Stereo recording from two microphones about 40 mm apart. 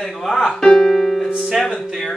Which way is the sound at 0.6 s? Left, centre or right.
Centre.